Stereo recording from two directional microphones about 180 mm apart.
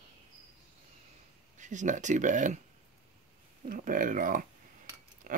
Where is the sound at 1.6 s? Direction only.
45° right (ahead or behind).